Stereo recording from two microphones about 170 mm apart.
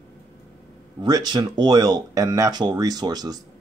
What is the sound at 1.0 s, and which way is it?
Speech, 25° right (ahead or behind).